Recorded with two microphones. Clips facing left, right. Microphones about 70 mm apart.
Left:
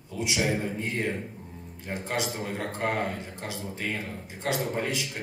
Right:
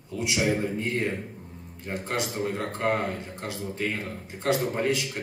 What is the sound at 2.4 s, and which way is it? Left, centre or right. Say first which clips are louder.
A man's voice: right 3 dB; right.